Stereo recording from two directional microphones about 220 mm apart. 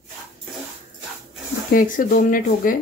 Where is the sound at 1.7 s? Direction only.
40° left (ahead or behind).